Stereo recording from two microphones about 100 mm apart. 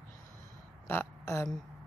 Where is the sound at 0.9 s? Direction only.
25° left (ahead or behind).